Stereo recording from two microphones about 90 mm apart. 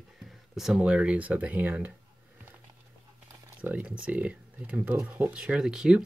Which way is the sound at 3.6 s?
15° right (ahead or behind).